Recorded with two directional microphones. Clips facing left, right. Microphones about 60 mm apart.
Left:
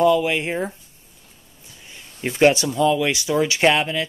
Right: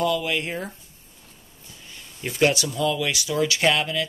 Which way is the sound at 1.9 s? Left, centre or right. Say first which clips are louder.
Left 5 dB; left.